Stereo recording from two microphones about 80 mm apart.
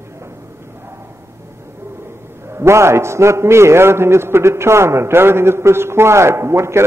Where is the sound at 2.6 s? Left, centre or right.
Right.